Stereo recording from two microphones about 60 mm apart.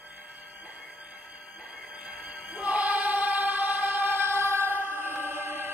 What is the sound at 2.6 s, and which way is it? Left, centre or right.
Choir, right.